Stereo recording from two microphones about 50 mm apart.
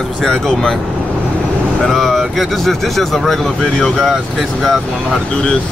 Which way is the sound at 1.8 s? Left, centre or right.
Centre.